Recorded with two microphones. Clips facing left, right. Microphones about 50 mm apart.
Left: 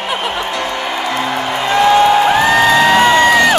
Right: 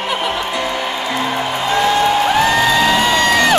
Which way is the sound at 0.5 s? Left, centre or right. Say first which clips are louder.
Even; centre.